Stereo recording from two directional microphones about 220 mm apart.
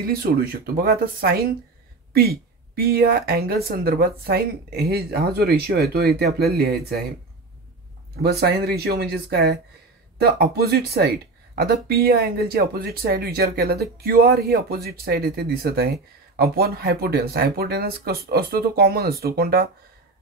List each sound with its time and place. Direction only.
0.0 s speech: 40° right (ahead or behind)
8.2 s speech: 45° right (ahead or behind)